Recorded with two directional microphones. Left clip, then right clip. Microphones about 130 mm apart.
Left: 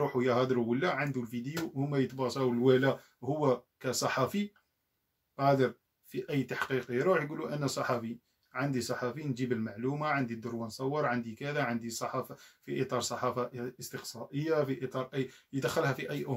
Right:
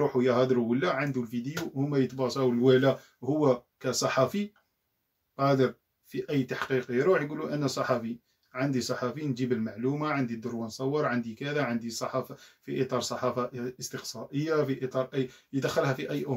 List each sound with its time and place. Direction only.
0.1 s speech: 25° left (ahead or behind)